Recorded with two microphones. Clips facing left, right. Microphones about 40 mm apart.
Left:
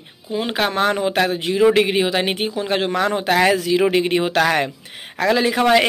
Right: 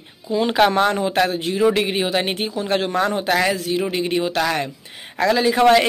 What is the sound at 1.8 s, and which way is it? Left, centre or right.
A man's voice, left.